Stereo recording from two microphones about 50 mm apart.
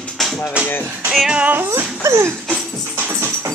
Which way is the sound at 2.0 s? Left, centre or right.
Right.